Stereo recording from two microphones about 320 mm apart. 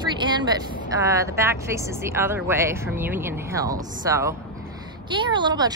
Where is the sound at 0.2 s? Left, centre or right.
Centre.